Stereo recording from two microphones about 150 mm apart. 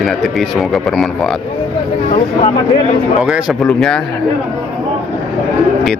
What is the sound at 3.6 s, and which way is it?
Speech, 5° left (ahead or behind).